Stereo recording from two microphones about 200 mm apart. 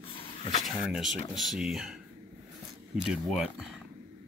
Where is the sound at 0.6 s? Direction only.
Centre (ahead or behind).